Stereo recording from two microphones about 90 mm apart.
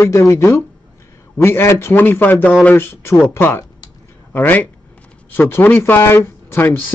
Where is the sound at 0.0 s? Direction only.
35° left (ahead or behind).